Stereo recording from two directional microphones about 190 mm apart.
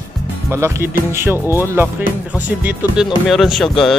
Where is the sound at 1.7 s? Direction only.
10° right (ahead or behind).